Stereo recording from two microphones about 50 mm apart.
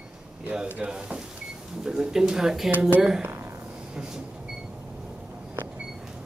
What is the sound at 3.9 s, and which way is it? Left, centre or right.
Train, centre.